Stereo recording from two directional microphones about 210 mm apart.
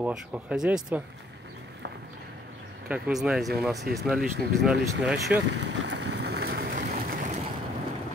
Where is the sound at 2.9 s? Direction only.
5° right (ahead or behind).